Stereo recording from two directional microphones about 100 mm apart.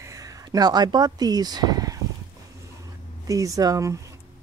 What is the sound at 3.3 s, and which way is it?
Speech, 35° right (ahead or behind).